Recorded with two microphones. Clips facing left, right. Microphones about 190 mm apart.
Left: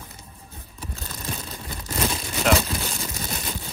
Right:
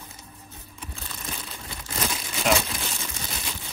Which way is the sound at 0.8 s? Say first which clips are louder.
Left 4 dB; 40° left (ahead or behind).